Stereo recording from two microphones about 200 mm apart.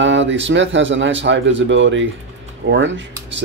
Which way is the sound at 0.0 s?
70° right (ahead or behind).